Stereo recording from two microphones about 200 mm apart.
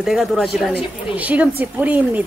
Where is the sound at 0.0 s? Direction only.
Centre (ahead or behind).